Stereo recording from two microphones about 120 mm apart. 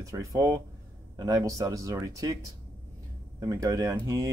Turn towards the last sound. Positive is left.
turn(degrees=-30)  # may be behind; listen again after turning